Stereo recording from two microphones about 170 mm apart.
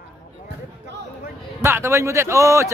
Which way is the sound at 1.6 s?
15° right (ahead or behind).